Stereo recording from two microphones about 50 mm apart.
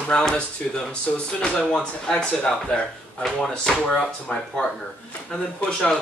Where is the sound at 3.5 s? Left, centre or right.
Centre.